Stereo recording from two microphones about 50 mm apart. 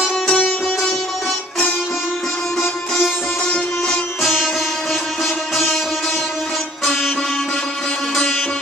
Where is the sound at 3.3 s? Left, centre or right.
Centre.